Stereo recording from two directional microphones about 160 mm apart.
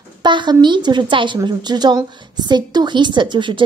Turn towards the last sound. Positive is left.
turn(degrees=-30)  # may be behind; listen again after turning